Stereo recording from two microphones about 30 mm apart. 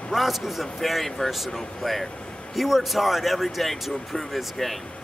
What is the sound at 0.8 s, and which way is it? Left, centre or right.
Speech, centre.